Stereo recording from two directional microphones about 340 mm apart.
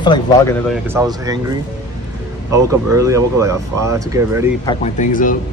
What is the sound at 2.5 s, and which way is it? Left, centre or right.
Speech, centre.